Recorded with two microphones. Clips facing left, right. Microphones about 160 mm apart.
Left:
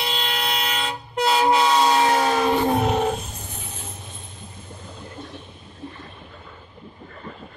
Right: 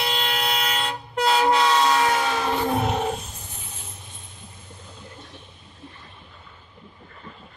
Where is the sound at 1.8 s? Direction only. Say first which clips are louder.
Left 2 dB; 25° left (ahead or behind).